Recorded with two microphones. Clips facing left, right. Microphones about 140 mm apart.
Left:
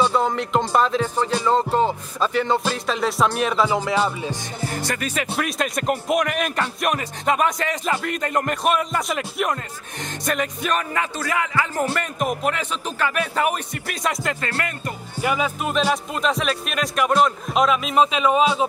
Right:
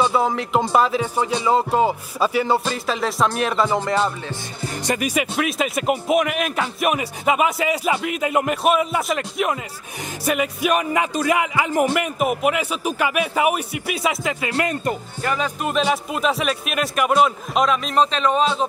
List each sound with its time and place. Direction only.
0.0 s speech: 5° right (ahead or behind)
0.7 s music: 5° right (ahead or behind)
2.6 s speech: centre (ahead or behind)
4.6 s music: 20° right (ahead or behind)
5.3 s speech: centre (ahead or behind)
10.2 s music: 10° right (ahead or behind)
14.5 s speech: 20° right (ahead or behind)
15.2 s speech: 5° left (ahead or behind)